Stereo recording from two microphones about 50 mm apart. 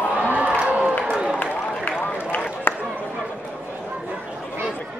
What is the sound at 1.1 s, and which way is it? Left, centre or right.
Run, centre.